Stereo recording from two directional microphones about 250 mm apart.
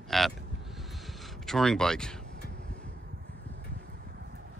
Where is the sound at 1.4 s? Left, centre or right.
Centre.